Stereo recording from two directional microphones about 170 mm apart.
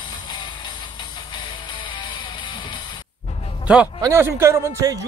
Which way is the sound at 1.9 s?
25° left (ahead or behind).